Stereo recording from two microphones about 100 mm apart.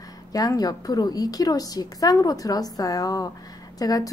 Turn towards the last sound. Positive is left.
turn(degrees=35)  # may be behind; listen again after turning